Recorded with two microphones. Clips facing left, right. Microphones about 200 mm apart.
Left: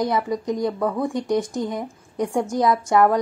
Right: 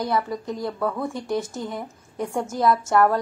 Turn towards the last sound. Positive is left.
turn(degrees=15)  # may be behind; listen again after turning